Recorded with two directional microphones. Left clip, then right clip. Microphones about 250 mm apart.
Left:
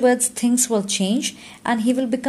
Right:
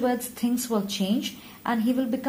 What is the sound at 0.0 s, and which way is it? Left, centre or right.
A woman's voice, left.